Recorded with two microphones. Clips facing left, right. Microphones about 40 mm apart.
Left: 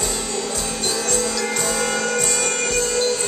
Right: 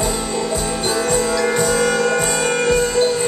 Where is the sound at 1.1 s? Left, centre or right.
Centre.